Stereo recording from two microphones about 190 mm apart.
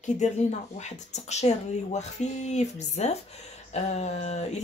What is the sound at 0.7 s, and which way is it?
Speech, 35° left (ahead or behind).